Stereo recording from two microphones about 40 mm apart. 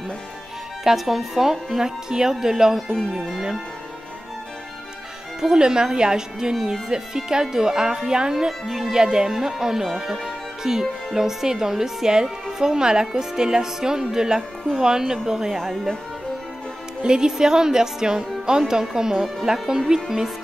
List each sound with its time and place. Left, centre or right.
0.8 s speech: centre
2.0 s a woman's voice: centre
5.4 s a woman's voice: centre
8.6 s speech: centre
8.9 s a woman's voice: centre
17.0 s a woman's voice: centre